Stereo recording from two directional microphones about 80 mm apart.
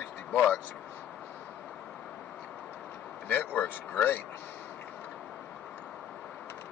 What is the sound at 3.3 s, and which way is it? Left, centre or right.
Speech, left.